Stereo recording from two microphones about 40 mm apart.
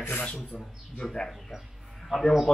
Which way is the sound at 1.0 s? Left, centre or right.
Left.